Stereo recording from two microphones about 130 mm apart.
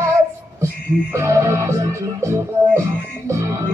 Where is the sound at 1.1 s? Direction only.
20° right (ahead or behind).